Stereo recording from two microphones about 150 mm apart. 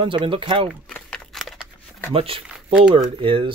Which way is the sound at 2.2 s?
40° right (ahead or behind).